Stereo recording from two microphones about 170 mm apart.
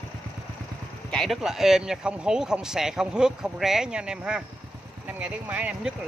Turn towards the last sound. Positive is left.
turn(degrees=-10)  # may be behind; listen again after turning